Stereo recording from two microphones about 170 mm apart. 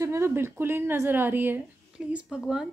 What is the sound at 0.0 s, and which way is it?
A woman's voice, 15° right (ahead or behind).